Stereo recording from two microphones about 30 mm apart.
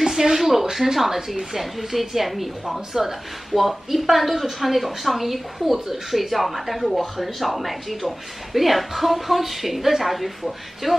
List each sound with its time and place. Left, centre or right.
0.0 s a sound: centre
0.7 s speech: centre
0.9 s a woman's voice: centre